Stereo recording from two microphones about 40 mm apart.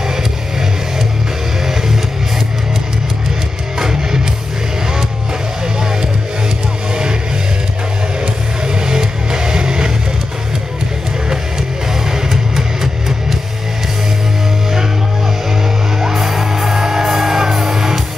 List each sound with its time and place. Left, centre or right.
3.8 s music: centre
8.6 s music: centre
12.1 s music: centre
16.0 s music: centre